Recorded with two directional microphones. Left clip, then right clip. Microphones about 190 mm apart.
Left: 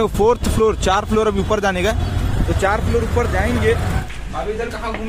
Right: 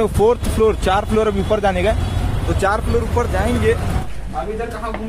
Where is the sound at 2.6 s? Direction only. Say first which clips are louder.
Even; 10° right (ahead or behind).